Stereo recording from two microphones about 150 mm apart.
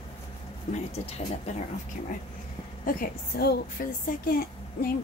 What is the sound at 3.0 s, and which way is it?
A woman's voice, 80° left.